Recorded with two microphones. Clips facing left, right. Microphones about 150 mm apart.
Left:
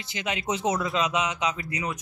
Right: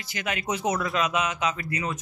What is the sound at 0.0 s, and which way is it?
Speech, 20° left (ahead or behind).